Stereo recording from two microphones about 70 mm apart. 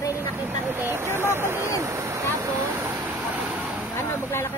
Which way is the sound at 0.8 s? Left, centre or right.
Right.